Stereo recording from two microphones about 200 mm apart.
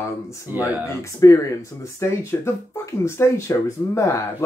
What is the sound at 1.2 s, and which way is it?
Speech, 15° left (ahead or behind).